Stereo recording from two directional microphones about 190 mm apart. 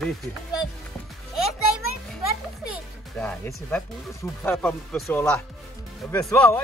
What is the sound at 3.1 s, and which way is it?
Speech, 5° left (ahead or behind).